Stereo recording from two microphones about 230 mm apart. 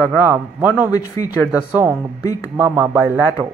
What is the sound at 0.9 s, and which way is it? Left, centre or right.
Speech, centre.